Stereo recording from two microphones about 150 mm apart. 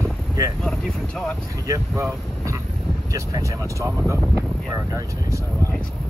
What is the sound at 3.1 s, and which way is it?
Speech, 20° right (ahead or behind).